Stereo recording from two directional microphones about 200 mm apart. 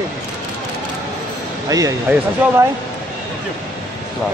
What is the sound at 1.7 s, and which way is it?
Speech, 15° right (ahead or behind).